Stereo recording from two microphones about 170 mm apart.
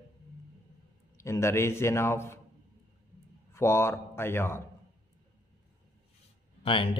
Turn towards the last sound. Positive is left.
turn(degrees=30)  # may be behind; listen again after turning